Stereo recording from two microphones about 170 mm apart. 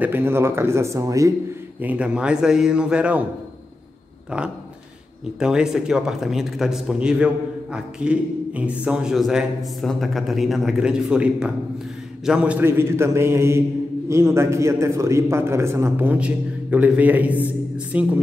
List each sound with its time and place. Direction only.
0.0 s a man's voice: 10° right (ahead or behind)
1.8 s speech: 10° right (ahead or behind)
4.3 s a man's voice: 5° right (ahead or behind)